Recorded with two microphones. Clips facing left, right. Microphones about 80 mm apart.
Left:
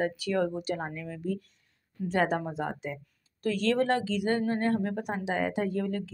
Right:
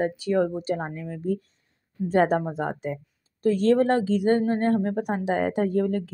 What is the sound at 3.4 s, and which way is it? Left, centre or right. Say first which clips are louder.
Speech: right 7 dB; right.